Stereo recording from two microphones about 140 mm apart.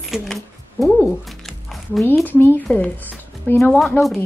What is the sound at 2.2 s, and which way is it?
Speech, 15° left (ahead or behind).